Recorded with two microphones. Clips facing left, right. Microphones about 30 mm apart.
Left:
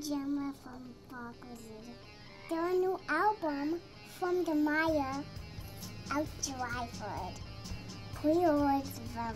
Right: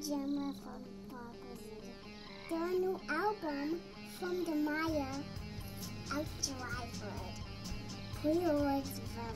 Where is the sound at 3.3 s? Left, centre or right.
Centre.